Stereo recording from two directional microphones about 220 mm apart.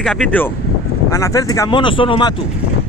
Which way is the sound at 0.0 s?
5° left (ahead or behind).